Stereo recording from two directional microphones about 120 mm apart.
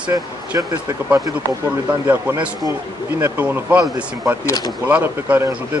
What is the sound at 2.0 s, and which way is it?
Speech, 15° right (ahead or behind).